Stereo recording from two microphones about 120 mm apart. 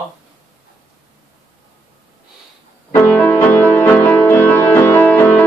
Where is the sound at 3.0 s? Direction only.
15° left (ahead or behind).